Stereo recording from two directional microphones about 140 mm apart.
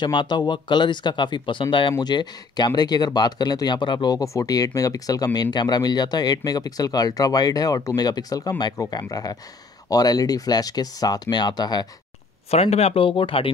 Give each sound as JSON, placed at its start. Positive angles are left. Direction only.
{"t": 0.0, "sound": "speech", "side_deg": 35}
{"t": 12.4, "sound": "speech", "side_deg": 50}